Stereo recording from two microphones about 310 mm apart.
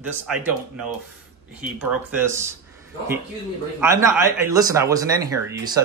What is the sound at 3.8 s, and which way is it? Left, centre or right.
Speech, centre.